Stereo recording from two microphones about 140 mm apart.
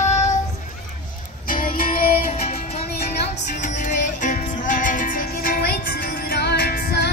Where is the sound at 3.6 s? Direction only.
70° left (ahead or behind); by 6.8 s 90° left.